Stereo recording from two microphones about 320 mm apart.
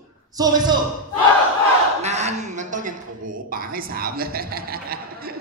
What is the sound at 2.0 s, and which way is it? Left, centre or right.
Speech, right.